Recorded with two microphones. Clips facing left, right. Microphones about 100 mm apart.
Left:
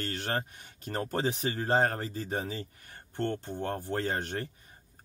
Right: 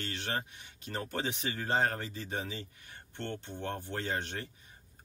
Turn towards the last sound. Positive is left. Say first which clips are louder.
# left 4 dB
turn(degrees=45)  # may be behind; listen again after turning